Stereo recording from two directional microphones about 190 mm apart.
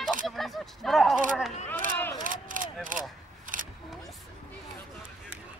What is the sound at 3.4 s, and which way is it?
Single-lens reflex camera, 45° right (ahead or behind).